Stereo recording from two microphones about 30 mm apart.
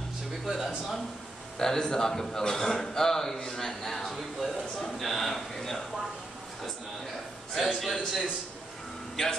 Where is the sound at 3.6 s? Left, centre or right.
Centre.